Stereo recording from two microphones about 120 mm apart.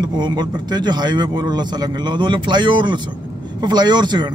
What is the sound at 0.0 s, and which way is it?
Speech, 35° right (ahead or behind).